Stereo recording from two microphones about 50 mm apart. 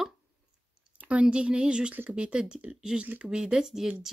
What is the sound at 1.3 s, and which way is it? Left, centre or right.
Speech, right.